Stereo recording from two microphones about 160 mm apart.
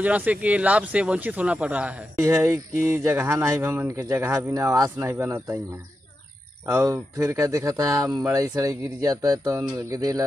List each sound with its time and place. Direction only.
0.0 s speech: 10° right (ahead or behind)
6.6 s speech: 15° right (ahead or behind)